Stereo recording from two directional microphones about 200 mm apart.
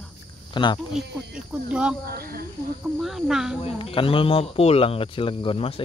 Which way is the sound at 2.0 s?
50° right (ahead or behind).